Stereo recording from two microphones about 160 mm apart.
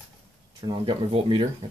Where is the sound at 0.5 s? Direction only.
30° right (ahead or behind).